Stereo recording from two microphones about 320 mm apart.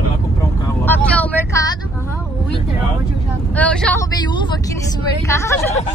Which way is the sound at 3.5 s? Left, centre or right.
Centre.